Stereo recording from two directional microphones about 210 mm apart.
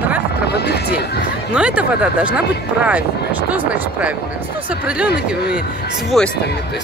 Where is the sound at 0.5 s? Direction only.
50° left (ahead or behind).